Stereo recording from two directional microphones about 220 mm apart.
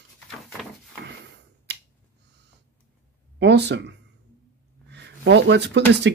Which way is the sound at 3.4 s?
50° right (ahead or behind).